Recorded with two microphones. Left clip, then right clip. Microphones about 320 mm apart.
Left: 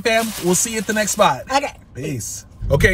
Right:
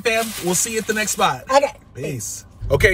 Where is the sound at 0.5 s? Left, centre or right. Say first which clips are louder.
Left 1 dB; centre.